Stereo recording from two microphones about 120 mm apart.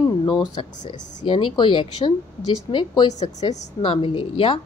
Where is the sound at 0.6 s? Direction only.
45° left (ahead or behind).